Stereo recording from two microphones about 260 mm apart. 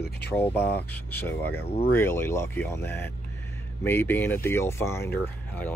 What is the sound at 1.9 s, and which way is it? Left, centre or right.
Speech, centre.